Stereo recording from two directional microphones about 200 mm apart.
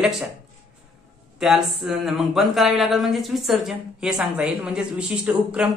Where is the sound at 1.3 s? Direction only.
5° right (ahead or behind).